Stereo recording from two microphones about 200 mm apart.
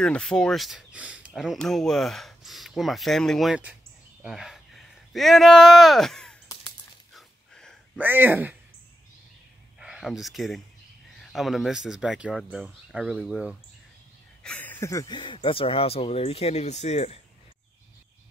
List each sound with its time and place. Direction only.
0.0 s speech: 5° left (ahead or behind)
7.2 s a sound: centre (ahead or behind)
8.0 s speech: 10° right (ahead or behind)
9.8 s speech: centre (ahead or behind)
14.4 s speech: 5° left (ahead or behind); by 17.2 s 30° left (ahead or behind)